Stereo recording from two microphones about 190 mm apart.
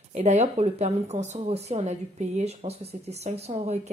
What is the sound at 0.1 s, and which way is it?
Speech, 35° right (ahead or behind).